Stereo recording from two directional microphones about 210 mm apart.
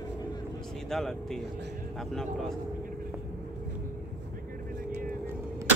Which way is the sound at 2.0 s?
Centre (ahead or behind).